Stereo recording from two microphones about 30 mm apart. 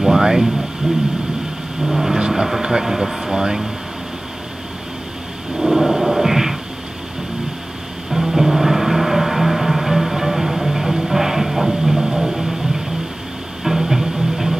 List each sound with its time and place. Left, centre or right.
0.0 s air conditioning: centre
1.9 s speech: centre
2.1 s vehicle: right
2.8 s speech: centre
5.6 s a sound: centre
8.1 s music: centre
11.1 s a sound: centre
12.4 s music: centre